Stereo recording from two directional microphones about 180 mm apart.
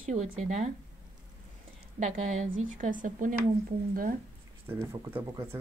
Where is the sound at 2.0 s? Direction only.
40° right (ahead or behind).